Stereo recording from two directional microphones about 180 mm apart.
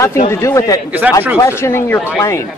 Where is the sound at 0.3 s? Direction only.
15° left (ahead or behind).